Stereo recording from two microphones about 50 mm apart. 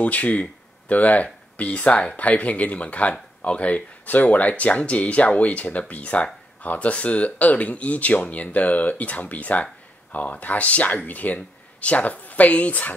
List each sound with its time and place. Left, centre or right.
0.0 s speech: left